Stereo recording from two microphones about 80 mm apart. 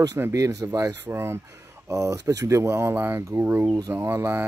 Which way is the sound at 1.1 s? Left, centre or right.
Right.